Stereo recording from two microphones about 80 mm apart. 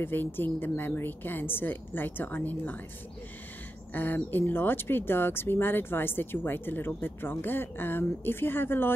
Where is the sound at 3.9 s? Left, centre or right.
Left.